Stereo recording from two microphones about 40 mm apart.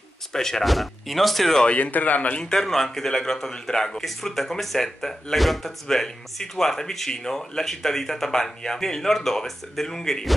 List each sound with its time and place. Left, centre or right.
0.3 s speech: centre
0.7 s speech: centre
1.7 s speech: left
2.5 s speech: centre